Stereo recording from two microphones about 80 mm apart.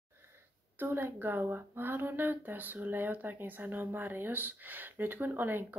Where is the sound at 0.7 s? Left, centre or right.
Right.